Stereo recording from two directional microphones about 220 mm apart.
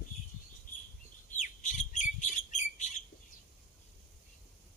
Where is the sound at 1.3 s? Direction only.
35° left (ahead or behind).